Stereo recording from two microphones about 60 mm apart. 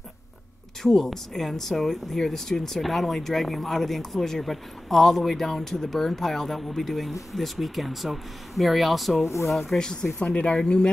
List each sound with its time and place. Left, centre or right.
0.8 s speech: centre
9.2 s speech: left
9.5 s speech: centre
10.1 s speech: centre